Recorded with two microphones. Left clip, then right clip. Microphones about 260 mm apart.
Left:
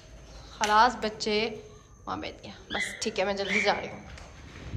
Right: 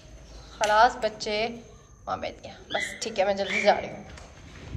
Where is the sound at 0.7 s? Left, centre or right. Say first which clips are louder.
Right 1 dB; left.